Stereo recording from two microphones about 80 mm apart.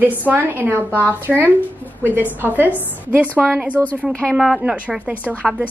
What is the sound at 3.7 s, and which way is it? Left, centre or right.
Speech, left.